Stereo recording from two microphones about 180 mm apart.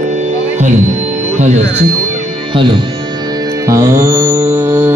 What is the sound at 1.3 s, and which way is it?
Speech, 40° right (ahead or behind).